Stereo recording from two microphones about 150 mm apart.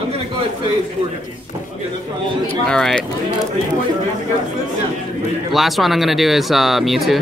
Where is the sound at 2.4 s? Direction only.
5° left (ahead or behind).